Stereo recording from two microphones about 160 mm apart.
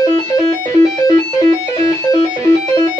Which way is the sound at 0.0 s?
20° left (ahead or behind).